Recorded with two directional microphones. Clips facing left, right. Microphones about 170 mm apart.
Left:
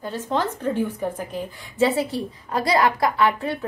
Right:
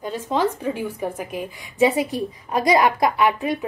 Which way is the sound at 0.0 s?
10° right (ahead or behind).